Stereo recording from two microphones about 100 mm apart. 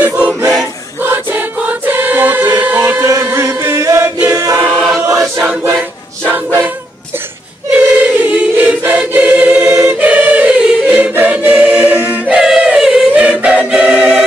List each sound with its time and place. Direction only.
0.0 s choir: 15° right (ahead or behind)
1.0 s music: 20° right (ahead or behind)
3.0 s music: 35° right (ahead or behind)
3.3 s chant: 25° right (ahead or behind)
4.3 s choir: 30° right (ahead or behind)
4.6 s choir: 10° left (ahead or behind)
5.2 s choir: 10° right (ahead or behind)
6.2 s a capella: 20° right (ahead or behind)
7.7 s choir: 15° right (ahead or behind)